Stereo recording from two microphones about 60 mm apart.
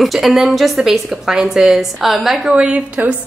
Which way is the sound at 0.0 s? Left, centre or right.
Centre.